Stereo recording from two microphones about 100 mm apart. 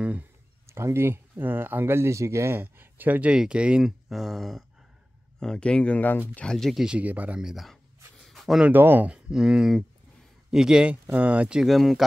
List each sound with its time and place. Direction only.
0.7 s speech: 25° right (ahead or behind); by 6.4 s 20° left (ahead or behind)
6.4 s speech: 5° left (ahead or behind)
8.2 s a sound: centre (ahead or behind)
8.6 s speech: 20° right (ahead or behind); by 12.0 s centre (ahead or behind)